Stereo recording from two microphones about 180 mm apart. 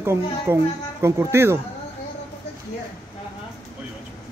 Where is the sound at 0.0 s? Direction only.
15° right (ahead or behind).